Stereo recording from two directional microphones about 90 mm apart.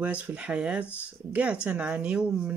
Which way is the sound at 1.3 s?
15° right (ahead or behind).